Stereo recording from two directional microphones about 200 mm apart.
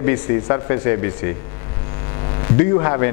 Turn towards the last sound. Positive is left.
turn(degrees=20)  # may be behind; listen again after turning